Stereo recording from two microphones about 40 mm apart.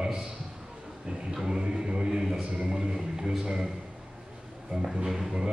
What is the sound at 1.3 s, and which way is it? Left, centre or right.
A man's voice, centre.